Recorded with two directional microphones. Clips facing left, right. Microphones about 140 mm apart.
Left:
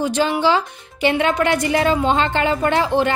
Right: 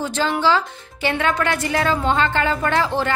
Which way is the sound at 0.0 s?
15° left (ahead or behind).